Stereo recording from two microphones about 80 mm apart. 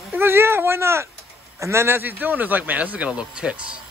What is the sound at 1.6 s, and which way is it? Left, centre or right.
Speech, right.